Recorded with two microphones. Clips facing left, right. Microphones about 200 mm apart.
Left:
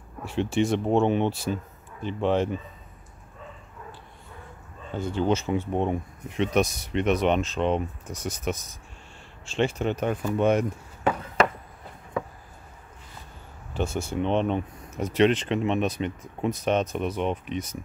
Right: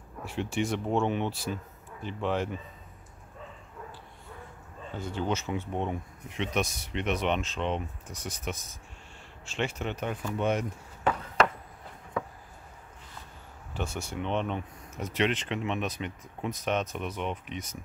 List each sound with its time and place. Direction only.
0.2 s speech: 25° left (ahead or behind)
4.9 s speech: 25° left (ahead or behind)
5.7 s speech: 40° left (ahead or behind)
9.5 s speech: 30° left (ahead or behind)
10.4 s speech: 50° left (ahead or behind)
11.1 s a sound: 10° left (ahead or behind)
13.7 s speech: 25° left (ahead or behind)